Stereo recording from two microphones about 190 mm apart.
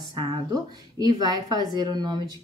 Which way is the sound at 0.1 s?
20° right (ahead or behind).